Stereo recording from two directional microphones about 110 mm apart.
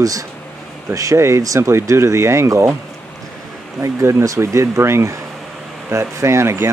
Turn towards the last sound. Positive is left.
turn(degrees=-25)  # may be behind; listen again after turning